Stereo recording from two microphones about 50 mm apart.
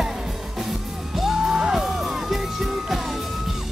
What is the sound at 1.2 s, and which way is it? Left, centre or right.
Music, centre.